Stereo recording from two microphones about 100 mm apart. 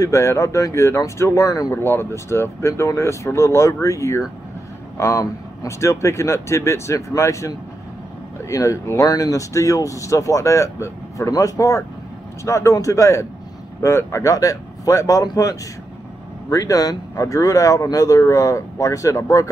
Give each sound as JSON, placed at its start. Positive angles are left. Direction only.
{"t": 0.0, "sound": "speech", "side_deg": 30}
{"t": 1.7, "sound": "speech", "side_deg": 25}